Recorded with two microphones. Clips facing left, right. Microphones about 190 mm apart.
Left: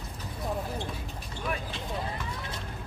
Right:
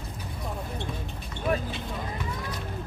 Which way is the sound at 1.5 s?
40° right (ahead or behind).